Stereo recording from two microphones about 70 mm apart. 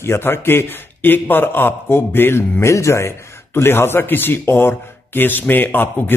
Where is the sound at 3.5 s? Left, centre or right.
Left.